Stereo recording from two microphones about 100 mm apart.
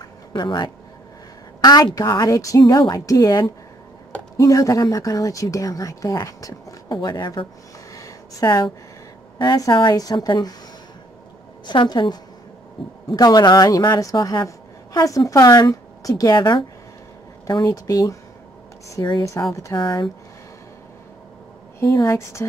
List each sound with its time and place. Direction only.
0.0 s a sound: 50° left (ahead or behind)
1.6 s a woman's voice: 45° left (ahead or behind)
6.9 s a woman's voice: 50° left (ahead or behind)
7.9 s a sound: 35° left (ahead or behind)
9.7 s a woman's voice: 50° left (ahead or behind)
11.6 s a woman's voice: 50° left (ahead or behind)
17.5 s speech: 35° left (ahead or behind)
19.4 s speech: 30° left (ahead or behind)
19.7 s a woman's voice: 50° left (ahead or behind)
21.7 s speech: 30° left (ahead or behind)